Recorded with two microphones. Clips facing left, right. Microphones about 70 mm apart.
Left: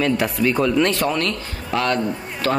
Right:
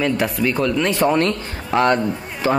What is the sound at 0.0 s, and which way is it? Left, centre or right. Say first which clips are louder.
Speech: even; centre.